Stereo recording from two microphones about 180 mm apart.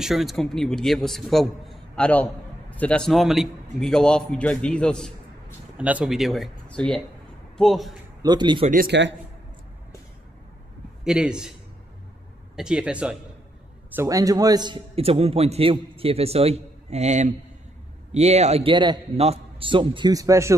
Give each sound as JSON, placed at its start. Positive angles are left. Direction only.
{"t": 0.0, "sound": "a man's voice", "side_deg": 0}
{"t": 5.8, "sound": "a man's voice", "side_deg": -5}
{"t": 8.2, "sound": "a man's voice", "side_deg": -25}
{"t": 8.6, "sound": "speech", "side_deg": -55}
{"t": 11.1, "sound": "a man's voice", "side_deg": -5}
{"t": 12.5, "sound": "a man's voice", "side_deg": -5}